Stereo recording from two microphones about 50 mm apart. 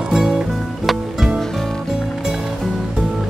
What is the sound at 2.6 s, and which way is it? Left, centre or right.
Music, centre.